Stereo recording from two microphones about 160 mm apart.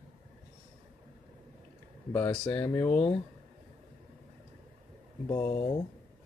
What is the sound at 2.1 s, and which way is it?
Speech, 10° left (ahead or behind).